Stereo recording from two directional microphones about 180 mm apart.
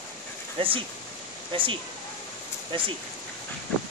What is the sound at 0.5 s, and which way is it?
Speech, 30° right (ahead or behind).